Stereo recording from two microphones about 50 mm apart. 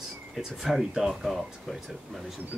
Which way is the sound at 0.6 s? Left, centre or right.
Centre.